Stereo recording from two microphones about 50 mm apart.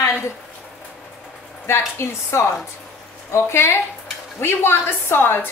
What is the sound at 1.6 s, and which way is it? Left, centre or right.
A woman's voice, left.